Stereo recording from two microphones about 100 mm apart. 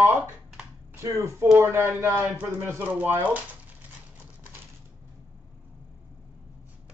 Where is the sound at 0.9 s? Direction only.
30° right (ahead or behind).